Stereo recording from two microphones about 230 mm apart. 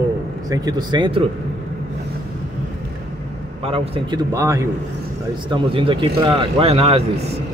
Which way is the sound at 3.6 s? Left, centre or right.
Right.